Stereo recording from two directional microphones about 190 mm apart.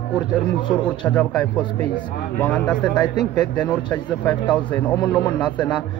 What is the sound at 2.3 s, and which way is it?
Speech, 5° left (ahead or behind).